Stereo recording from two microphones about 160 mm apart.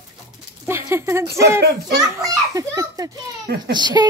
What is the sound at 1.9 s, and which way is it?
A child's voice, 20° right (ahead or behind).